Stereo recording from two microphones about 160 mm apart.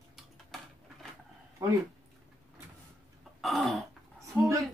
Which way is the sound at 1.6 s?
15° right (ahead or behind).